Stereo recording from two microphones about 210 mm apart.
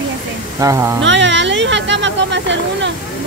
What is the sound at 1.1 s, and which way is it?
Speech, 60° right (ahead or behind).